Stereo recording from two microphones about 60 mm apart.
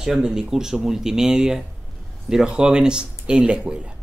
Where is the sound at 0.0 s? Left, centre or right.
Centre.